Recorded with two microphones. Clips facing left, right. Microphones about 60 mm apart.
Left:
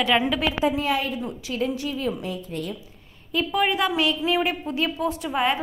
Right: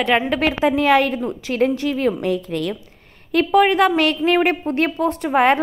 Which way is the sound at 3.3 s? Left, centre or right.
Right.